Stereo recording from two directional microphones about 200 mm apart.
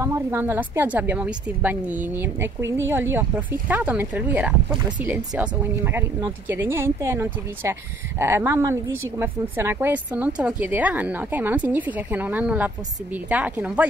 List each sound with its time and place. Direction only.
0.0 s a woman's voice: 10° right (ahead or behind)